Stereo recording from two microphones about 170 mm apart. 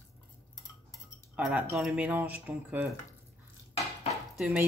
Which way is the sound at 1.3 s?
10° right (ahead or behind).